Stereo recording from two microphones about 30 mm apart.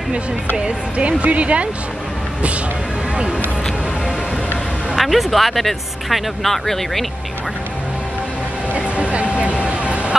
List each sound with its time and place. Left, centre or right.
0.7 s speech: right
4.9 s speech: centre
8.7 s vehicle: right